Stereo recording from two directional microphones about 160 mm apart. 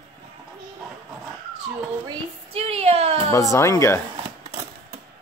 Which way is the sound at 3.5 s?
20° left (ahead or behind).